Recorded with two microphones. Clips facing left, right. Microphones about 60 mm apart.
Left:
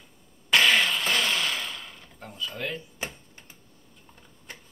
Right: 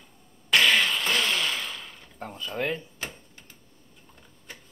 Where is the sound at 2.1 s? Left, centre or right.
Right.